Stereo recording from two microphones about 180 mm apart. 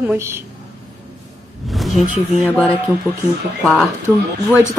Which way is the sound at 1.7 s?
Centre (ahead or behind).